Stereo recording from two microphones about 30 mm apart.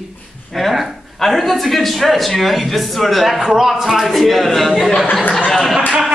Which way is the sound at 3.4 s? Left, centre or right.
Centre.